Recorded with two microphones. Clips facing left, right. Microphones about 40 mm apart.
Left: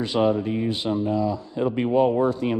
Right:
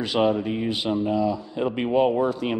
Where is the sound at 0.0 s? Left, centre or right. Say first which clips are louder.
Even; right.